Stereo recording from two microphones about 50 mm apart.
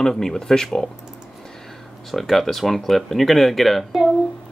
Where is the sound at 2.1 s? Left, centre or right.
Centre.